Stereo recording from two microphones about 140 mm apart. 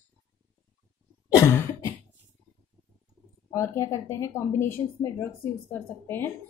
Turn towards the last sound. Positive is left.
turn(degrees=15)  # may be behind; listen again after turning